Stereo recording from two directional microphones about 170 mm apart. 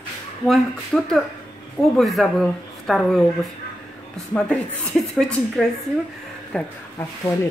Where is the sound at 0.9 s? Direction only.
Centre (ahead or behind).